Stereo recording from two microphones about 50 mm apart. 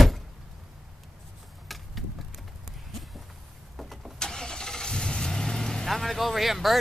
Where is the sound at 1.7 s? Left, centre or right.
Centre.